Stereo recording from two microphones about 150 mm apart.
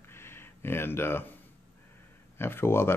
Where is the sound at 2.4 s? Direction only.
15° left (ahead or behind).